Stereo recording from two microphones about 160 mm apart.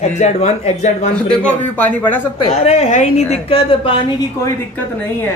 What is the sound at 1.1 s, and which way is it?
A man's voice, 5° left (ahead or behind).